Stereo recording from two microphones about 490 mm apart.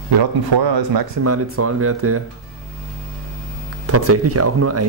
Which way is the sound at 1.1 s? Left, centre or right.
Right.